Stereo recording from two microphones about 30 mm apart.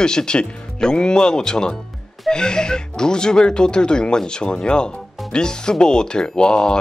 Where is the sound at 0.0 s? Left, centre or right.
Left.